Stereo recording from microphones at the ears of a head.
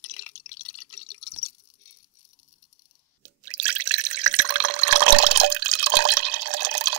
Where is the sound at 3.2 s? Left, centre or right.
Right.